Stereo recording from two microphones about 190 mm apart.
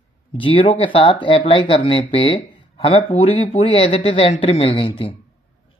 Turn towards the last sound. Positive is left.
turn(degrees=25)  # may be behind; listen again after turning